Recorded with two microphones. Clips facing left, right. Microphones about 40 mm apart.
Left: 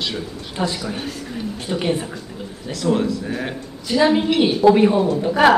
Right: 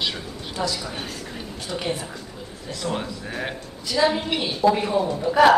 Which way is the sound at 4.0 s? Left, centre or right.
Centre.